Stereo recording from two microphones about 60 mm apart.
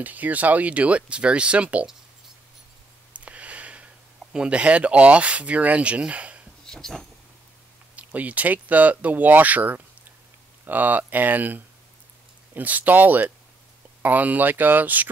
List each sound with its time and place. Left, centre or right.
0.0 s speech: right
3.3 s a sound: right
6.6 s speech: centre
7.9 s speech: right